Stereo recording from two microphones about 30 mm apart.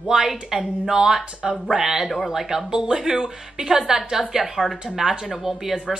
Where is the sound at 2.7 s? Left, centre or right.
Right.